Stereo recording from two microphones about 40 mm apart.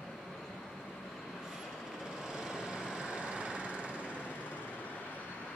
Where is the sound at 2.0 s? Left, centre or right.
Centre.